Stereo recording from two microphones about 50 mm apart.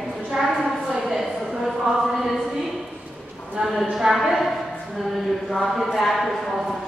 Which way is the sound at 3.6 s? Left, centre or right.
Centre.